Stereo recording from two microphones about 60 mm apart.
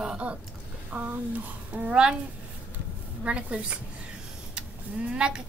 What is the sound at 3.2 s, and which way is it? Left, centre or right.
Speech, centre.